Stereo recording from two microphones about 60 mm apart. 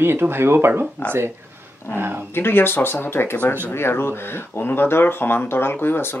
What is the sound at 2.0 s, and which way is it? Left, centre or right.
Speech, right.